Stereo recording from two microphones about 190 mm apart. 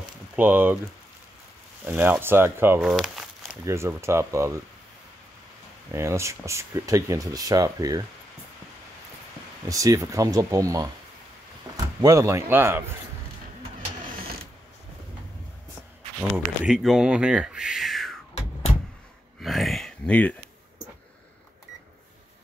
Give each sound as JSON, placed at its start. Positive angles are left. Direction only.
{"t": 0.4, "sound": "speech", "side_deg": -10}
{"t": 1.9, "sound": "speech", "side_deg": -10}
{"t": 2.9, "sound": "walk", "side_deg": 0}
{"t": 3.6, "sound": "speech", "side_deg": -15}
{"t": 5.9, "sound": "speech", "side_deg": -15}
{"t": 9.7, "sound": "speech", "side_deg": -20}
{"t": 14.0, "sound": "vehicle", "side_deg": -50}
{"t": 16.2, "sound": "speech", "side_deg": -5}
{"t": 19.4, "sound": "a sound", "side_deg": 0}